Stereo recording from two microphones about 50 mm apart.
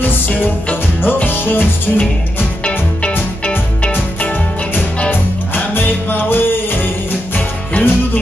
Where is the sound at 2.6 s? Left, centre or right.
Left.